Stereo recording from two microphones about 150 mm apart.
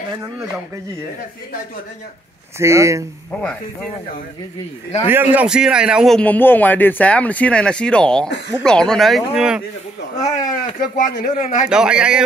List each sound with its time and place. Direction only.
0.1 s speech: 20° right (ahead or behind)
2.6 s speech: 20° right (ahead or behind)
3.3 s speech: 10° left (ahead or behind)
5.0 s a man's voice: 15° right (ahead or behind)
6.1 s speech: 10° left (ahead or behind)
10.2 s speech: 25° left (ahead or behind)
11.0 s speech: 60° left (ahead or behind)
11.7 s speech: 5° right (ahead or behind)